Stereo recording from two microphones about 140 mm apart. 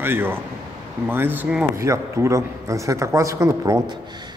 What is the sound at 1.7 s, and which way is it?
Speech, 20° right (ahead or behind).